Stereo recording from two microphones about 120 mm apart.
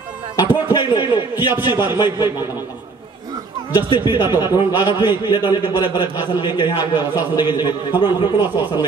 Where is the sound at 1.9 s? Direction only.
40° left (ahead or behind).